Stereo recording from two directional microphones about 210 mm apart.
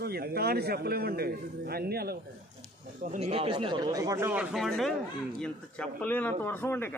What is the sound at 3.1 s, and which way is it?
A man's voice, 30° right (ahead or behind).